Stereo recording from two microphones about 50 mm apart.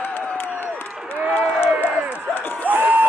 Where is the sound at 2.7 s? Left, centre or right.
Right.